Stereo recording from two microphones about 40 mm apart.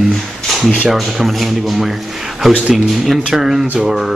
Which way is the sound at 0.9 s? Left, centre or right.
Centre.